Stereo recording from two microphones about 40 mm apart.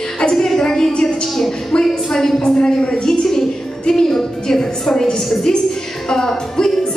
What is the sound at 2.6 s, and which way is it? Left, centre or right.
Speech, left.